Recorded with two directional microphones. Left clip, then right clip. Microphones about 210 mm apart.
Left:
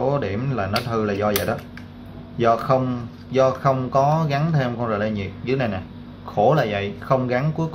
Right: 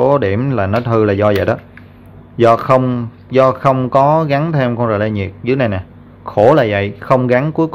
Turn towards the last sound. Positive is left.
turn(degrees=-50)  # may be behind; listen again after turning